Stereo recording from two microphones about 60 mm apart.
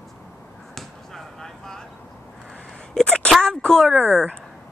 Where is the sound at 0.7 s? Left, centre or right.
Centre.